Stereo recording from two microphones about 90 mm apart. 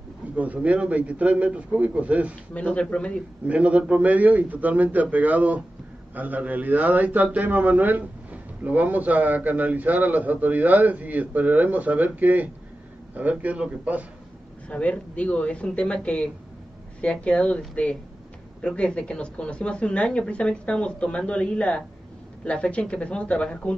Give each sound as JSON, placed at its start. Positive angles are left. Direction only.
{"t": 0.4, "sound": "a man's voice", "side_deg": -15}
{"t": 2.5, "sound": "speech", "side_deg": 15}
{"t": 3.4, "sound": "a man's voice", "side_deg": -15}
{"t": 14.7, "sound": "speech", "side_deg": 15}